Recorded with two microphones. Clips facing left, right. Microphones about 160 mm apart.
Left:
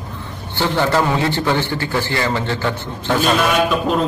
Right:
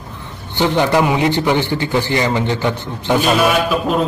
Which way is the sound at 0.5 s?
15° right (ahead or behind).